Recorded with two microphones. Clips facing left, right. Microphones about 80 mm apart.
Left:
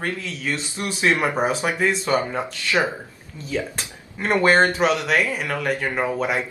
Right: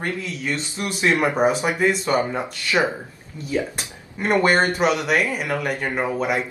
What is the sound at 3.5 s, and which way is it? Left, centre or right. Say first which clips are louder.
Speech: right 2 dB; centre.